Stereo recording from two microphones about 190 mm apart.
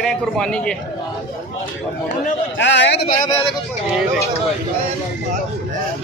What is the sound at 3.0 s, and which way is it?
Speech, 25° left (ahead or behind).